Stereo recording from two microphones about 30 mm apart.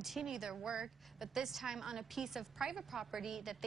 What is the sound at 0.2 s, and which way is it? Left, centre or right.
A woman's voice, centre.